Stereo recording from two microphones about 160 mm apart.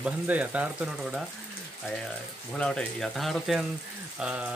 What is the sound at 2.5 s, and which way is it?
Speech, 5° left (ahead or behind).